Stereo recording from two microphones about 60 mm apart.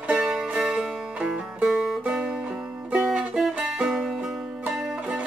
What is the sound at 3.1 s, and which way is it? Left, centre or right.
Music, centre.